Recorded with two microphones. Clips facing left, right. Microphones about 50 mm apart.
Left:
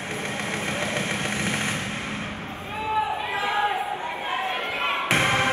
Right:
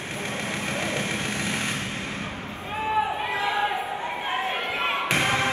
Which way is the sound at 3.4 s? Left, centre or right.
Left.